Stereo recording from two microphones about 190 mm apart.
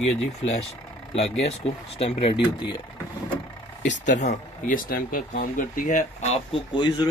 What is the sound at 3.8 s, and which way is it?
Speech, 40° left (ahead or behind).